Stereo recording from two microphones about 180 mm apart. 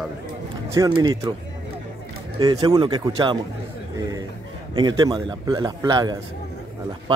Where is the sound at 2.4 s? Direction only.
25° right (ahead or behind).